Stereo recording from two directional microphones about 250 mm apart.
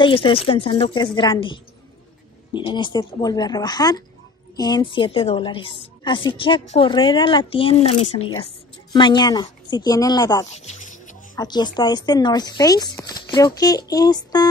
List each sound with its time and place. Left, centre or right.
0.0 s a woman's voice: centre
10.5 s music: left
11.3 s speech: centre